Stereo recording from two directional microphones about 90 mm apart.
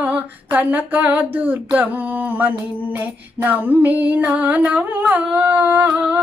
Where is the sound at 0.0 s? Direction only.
15° right (ahead or behind).